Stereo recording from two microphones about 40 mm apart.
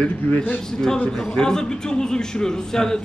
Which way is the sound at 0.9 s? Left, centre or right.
Left.